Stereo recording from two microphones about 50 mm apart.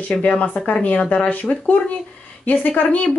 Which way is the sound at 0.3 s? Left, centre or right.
Left.